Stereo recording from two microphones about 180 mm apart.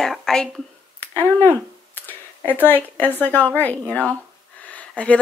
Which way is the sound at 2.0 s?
10° left (ahead or behind).